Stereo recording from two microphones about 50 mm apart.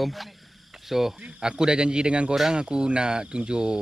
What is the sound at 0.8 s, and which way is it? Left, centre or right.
Speech, centre.